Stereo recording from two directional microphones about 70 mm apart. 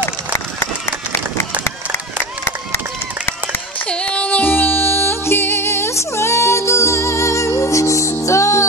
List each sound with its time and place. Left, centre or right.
3.8 s music: centre; by 8.6 s left